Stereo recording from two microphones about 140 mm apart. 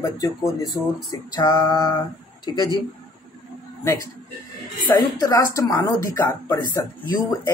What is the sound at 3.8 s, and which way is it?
A man's voice, 20° left (ahead or behind).